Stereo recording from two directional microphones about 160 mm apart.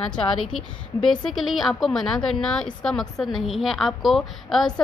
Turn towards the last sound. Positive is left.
turn(degrees=0)  # may be behind; listen again after turning